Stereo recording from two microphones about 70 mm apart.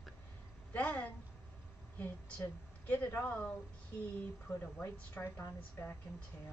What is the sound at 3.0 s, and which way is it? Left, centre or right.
Speech, left.